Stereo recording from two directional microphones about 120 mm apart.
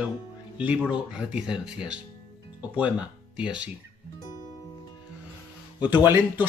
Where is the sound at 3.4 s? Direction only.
10° right (ahead or behind).